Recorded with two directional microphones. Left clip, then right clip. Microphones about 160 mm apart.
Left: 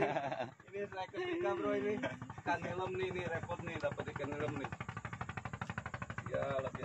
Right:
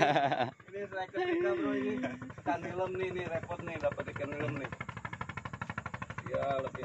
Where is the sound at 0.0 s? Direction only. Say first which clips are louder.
Right 8 dB; 90° right.